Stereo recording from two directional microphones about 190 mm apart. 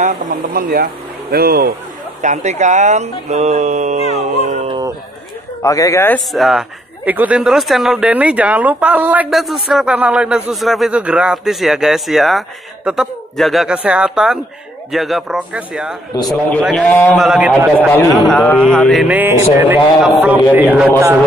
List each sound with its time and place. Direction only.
0.0 s speech: 45° right (ahead or behind)
2.2 s speech: 40° right (ahead or behind)
4.6 s a sound: 25° right (ahead or behind)
5.6 s speech: 15° left (ahead or behind)
17.1 s speech: 5° right (ahead or behind)
17.5 s speech: 5° left (ahead or behind); by 19.8 s 10° right (ahead or behind)
20.0 s a man's voice: centre (ahead or behind)